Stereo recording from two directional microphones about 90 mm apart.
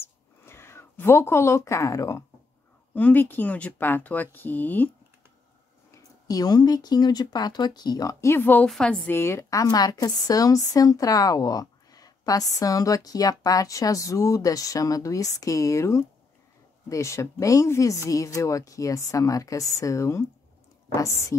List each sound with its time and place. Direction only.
0.0 s a sound: 25° left (ahead or behind)
2.9 s speech: 20° left (ahead or behind)
6.2 s speech: 45° left (ahead or behind)
8.3 s speech: 20° left (ahead or behind)
8.6 s a woman's voice: 5° left (ahead or behind)
9.0 s a woman's voice: 25° left (ahead or behind)